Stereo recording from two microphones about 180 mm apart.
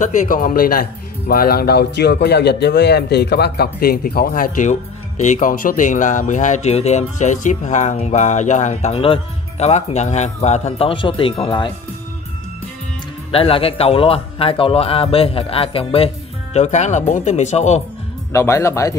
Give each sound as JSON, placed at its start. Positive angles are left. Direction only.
{"t": 0.0, "sound": "a man's voice", "side_deg": 45}
{"t": 13.3, "sound": "a man's voice", "side_deg": 30}
{"t": 18.3, "sound": "speech", "side_deg": 15}